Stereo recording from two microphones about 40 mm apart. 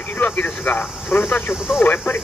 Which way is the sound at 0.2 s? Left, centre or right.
Left.